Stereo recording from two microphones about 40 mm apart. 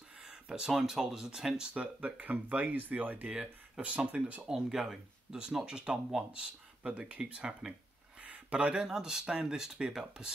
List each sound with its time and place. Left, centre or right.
0.2 s a sound: centre
0.7 s speech: centre
1.7 s speech: right
4.4 s speech: centre
6.9 s speech: right
7.2 s speech: right
8.2 s a sound: right
8.7 s speech: centre